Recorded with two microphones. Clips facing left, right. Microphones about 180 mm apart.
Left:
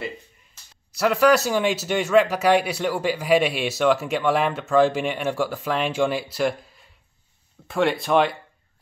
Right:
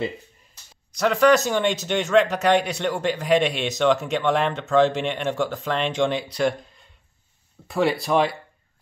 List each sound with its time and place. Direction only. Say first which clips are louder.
0.9 s speech: even; 5° left (ahead or behind)